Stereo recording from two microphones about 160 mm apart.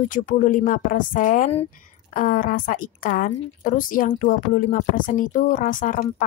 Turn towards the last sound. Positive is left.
turn(degrees=55)  # may be behind; listen again after turning